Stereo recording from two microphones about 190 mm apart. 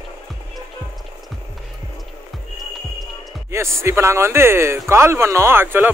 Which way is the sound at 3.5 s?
15° right (ahead or behind).